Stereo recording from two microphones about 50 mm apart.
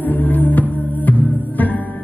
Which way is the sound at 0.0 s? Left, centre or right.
Left.